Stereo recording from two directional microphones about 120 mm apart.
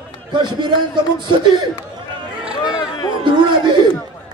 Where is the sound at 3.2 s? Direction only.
40° right (ahead or behind).